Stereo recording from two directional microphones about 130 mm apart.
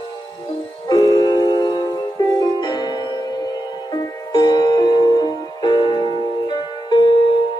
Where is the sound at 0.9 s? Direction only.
30° left (ahead or behind).